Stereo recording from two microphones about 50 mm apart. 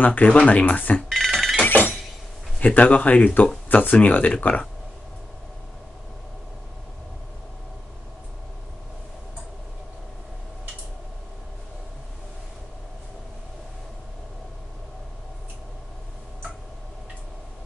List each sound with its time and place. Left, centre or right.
0.0 s speech: left
1.0 s telephone bell ringing: centre
1.7 s a sound: left
2.6 s speech: left